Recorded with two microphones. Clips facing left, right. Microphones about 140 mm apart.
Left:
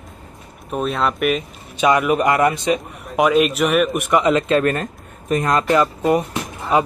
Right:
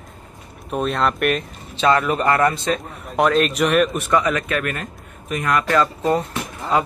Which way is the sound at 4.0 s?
20° left (ahead or behind).